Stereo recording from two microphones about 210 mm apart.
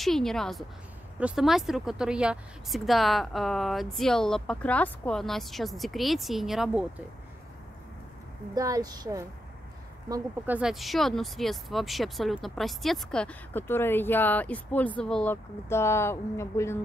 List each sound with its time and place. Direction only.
0.0 s speech: centre (ahead or behind)
8.5 s a woman's voice: 15° right (ahead or behind); by 16.7 s 15° left (ahead or behind)